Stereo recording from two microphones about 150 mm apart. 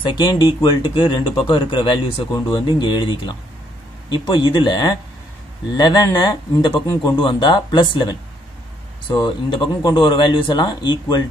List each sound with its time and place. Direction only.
0.0 s speech: 30° left (ahead or behind)